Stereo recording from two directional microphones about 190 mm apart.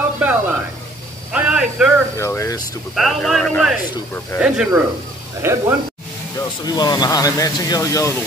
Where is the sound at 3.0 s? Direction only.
Centre (ahead or behind).